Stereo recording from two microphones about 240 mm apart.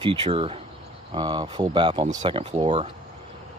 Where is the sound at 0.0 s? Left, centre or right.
Right.